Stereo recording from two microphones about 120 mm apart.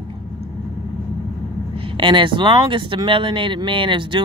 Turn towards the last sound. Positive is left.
turn(degrees=-45)  # may be behind; listen again after turning